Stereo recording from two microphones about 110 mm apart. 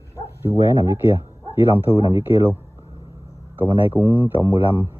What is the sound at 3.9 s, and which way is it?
A man's voice, 15° right (ahead or behind).